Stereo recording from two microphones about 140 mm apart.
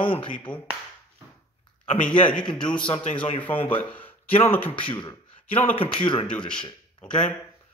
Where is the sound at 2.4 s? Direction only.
35° left (ahead or behind).